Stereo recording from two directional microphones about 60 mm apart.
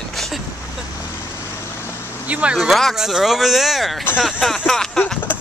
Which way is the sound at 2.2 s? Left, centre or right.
Right.